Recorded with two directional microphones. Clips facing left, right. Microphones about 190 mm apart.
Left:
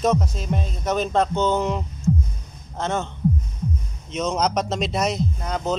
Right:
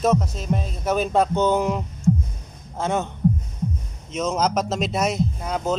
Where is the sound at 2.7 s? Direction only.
15° right (ahead or behind).